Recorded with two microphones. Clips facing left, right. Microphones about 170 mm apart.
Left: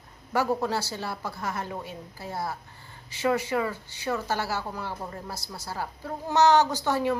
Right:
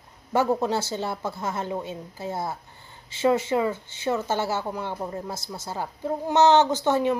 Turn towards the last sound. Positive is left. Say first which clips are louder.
# right 4 dB
turn(degrees=-20)  # may be behind; listen again after turning